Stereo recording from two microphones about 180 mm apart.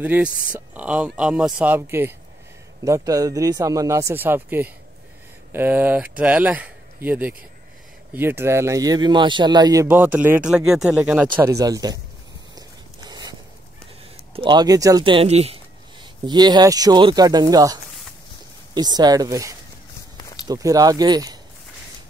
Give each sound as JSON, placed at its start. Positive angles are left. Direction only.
{"t": 0.0, "sound": "speech", "side_deg": -10}
{"t": 12.5, "sound": "a sound", "side_deg": -20}
{"t": 14.3, "sound": "speech", "side_deg": -25}
{"t": 18.8, "sound": "speech", "side_deg": -20}
{"t": 20.2, "sound": "a sound", "side_deg": 20}
{"t": 20.4, "sound": "speech", "side_deg": -20}